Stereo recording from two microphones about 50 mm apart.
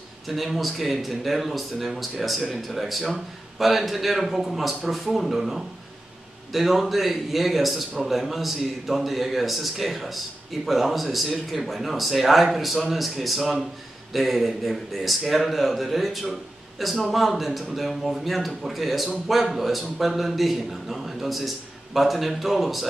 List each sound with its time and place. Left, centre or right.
0.3 s a man's voice: centre